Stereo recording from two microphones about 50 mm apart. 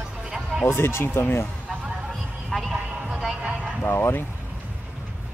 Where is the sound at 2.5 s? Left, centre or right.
Centre.